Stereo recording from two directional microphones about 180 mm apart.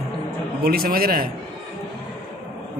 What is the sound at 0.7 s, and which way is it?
Speech, 55° right (ahead or behind).